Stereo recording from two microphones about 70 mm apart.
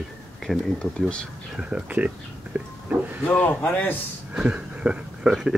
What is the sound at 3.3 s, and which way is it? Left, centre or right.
Speech, left.